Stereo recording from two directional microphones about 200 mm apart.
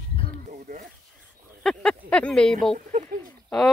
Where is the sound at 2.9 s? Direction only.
40° right (ahead or behind).